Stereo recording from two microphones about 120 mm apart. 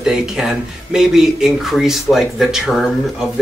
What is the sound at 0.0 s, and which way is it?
Speech, 5° right (ahead or behind).